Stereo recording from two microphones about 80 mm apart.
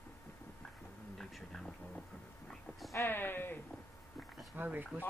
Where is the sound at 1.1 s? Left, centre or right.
Centre.